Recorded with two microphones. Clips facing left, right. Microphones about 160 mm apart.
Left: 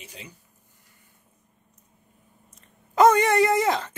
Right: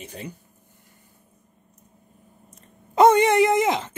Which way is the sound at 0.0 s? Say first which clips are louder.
Right 8 dB; 55° right (ahead or behind).